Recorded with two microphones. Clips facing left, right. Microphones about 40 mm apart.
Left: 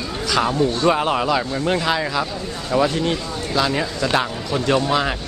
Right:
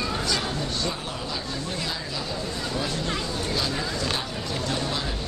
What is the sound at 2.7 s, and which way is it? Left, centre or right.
A man's voice, left.